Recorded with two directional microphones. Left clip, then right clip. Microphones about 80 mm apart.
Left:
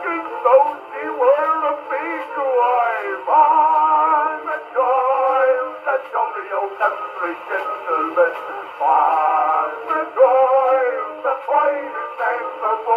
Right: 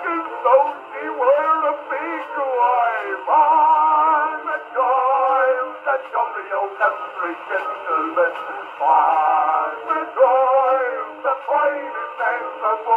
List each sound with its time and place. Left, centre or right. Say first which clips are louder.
0.0 s radio: left 1 dB; right
2.9 s music: left 1 dB; right
4.7 s synthetic singing: left 1 dB; right
7.5 s radio: even; right
8.8 s synthetic singing: even; right
10.8 s music: left 3 dB; right